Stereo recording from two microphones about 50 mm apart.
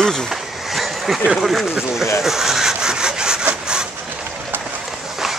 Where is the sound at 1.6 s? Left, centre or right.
Centre.